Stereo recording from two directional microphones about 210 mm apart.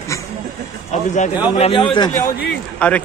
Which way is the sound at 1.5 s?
30° left (ahead or behind).